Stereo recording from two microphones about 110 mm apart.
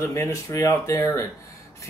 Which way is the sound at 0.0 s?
25° left (ahead or behind).